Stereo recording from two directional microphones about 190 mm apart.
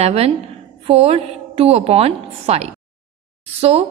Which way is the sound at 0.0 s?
35° right (ahead or behind).